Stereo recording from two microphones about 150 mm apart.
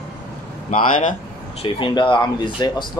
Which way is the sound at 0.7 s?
60° left (ahead or behind).